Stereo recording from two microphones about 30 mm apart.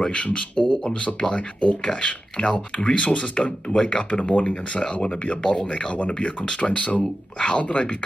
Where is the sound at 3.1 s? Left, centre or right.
Left.